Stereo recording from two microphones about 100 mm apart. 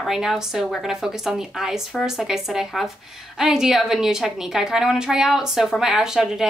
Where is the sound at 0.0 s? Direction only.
5° right (ahead or behind).